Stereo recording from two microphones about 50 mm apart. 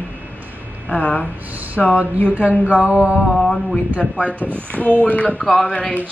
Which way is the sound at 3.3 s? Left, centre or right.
Centre.